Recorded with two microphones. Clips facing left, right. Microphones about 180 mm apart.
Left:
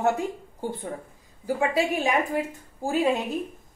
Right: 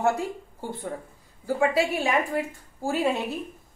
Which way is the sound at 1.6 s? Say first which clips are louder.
Right 1 dB; 20° left (ahead or behind).